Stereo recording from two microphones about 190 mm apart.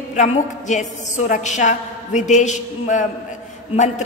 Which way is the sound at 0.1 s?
40° left (ahead or behind).